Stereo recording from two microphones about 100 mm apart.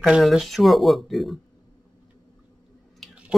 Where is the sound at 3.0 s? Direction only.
Centre (ahead or behind).